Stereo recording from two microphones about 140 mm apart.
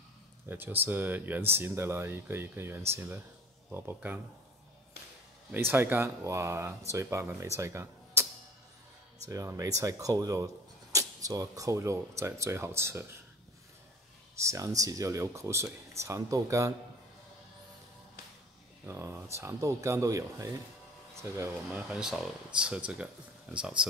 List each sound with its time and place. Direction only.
0.5 s speech: 15° right (ahead or behind)
5.5 s speech: 15° right (ahead or behind)
9.3 s speech: 25° right (ahead or behind)
14.3 s speech: 20° right (ahead or behind)
18.9 s speech: 20° right (ahead or behind)
21.8 s speech: 5° right (ahead or behind)